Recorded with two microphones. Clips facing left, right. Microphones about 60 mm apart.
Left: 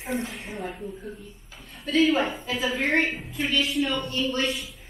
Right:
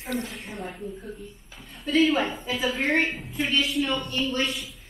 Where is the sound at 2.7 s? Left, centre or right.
Centre.